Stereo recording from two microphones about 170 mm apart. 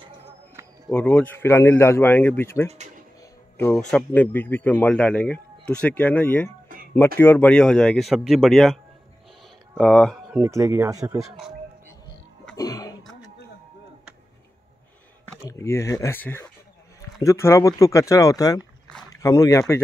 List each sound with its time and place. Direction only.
0.8 s speech: 5° left (ahead or behind)
3.7 s speech: 10° left (ahead or behind)
9.8 s speech: 5° left (ahead or behind)
10.4 s speech: 15° right (ahead or behind)
11.1 s speech: centre (ahead or behind)
12.5 s throat clearing: 20° left (ahead or behind)
15.4 s speech: 15° left (ahead or behind)